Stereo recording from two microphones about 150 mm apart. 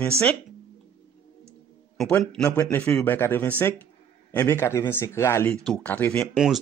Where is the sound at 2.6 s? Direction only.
15° left (ahead or behind).